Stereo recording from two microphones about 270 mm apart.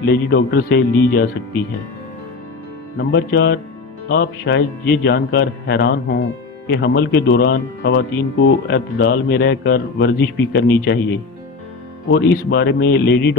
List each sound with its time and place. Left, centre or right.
0.0 s speech: left
3.0 s speech: left
12.1 s speech: left